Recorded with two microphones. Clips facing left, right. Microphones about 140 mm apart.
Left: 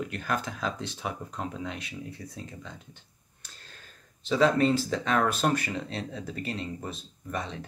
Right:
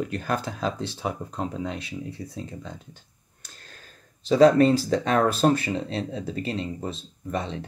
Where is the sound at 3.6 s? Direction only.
45° right (ahead or behind).